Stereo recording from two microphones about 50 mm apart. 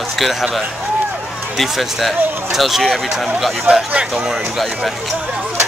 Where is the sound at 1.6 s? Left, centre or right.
Centre.